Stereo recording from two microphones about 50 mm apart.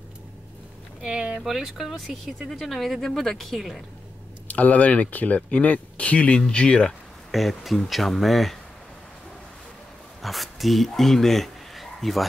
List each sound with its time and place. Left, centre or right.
1.0 s speech: centre
1.4 s speech: centre
4.5 s speech: left
7.2 s speech: centre
10.2 s speech: centre